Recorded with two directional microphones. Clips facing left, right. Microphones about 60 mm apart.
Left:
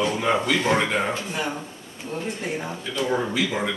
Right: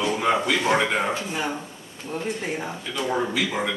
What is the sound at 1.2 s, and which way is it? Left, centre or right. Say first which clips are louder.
Speech: even; centre.